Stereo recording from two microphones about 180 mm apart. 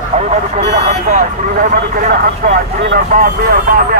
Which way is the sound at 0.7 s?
40° right (ahead or behind).